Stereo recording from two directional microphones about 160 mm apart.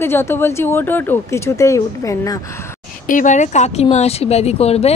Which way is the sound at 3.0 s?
55° left (ahead or behind).